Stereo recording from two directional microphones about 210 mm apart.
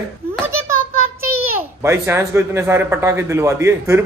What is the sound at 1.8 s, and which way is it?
A man's voice, 15° right (ahead or behind).